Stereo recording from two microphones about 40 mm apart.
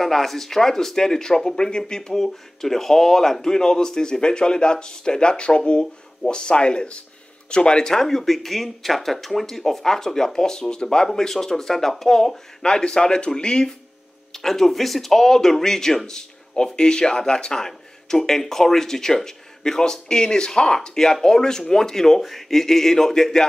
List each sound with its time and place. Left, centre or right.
0.0 s speech: centre
14.3 s speech: centre